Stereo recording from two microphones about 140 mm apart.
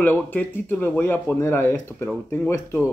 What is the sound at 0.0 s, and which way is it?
Speech, 10° left (ahead or behind).